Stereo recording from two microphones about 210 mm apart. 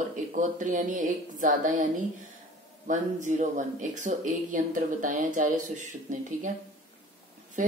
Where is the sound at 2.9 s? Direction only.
35° right (ahead or behind).